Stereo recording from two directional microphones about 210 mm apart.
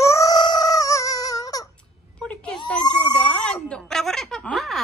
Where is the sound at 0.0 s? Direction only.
15° left (ahead or behind).